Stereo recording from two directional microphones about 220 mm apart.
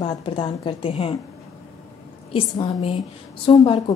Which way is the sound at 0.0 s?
25° left (ahead or behind).